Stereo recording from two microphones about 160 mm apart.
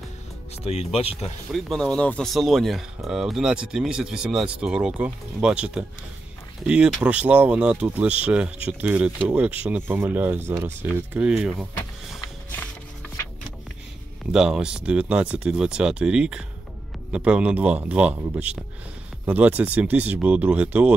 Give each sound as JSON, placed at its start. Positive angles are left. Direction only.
{"t": 0.7, "sound": "speech", "side_deg": 40}
{"t": 1.5, "sound": "speech", "side_deg": 0}
{"t": 12.2, "sound": "music", "side_deg": 15}
{"t": 14.3, "sound": "speech", "side_deg": -5}